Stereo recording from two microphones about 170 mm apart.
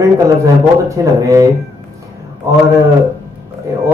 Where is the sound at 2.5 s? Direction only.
20° right (ahead or behind).